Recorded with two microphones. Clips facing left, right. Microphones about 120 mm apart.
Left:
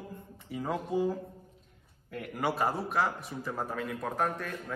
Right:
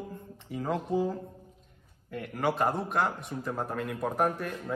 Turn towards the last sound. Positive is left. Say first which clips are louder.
# right 3 dB
turn(degrees=-10)  # may be behind; listen again after turning